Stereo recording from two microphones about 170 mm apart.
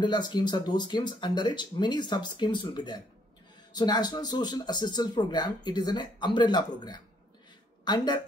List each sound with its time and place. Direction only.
0.0 s speech: 25° left (ahead or behind)